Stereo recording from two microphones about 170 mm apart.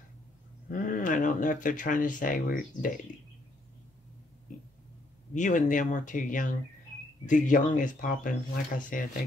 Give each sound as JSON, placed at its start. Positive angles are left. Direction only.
{"t": 0.7, "sound": "speech", "side_deg": 50}
{"t": 5.3, "sound": "speech", "side_deg": 50}